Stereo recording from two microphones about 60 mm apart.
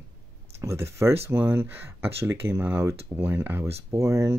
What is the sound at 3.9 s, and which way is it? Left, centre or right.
Speech, right.